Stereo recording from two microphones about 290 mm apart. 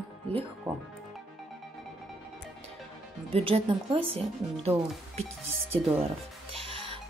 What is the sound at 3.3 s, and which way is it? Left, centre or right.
Speech, centre.